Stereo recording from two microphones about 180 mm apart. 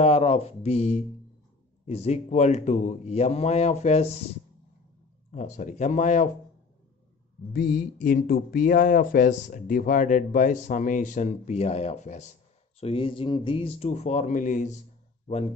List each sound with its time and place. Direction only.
0.0 s a man's voice: 35° left (ahead or behind)
5.3 s speech: 40° left (ahead or behind)
7.5 s speech: 55° left (ahead or behind)
12.8 s a man's voice: 30° left (ahead or behind)